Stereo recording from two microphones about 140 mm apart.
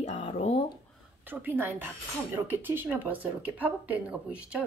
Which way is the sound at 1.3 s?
15° right (ahead or behind).